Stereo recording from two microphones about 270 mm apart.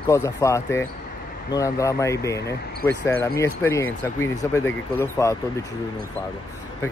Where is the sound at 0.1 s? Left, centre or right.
Centre.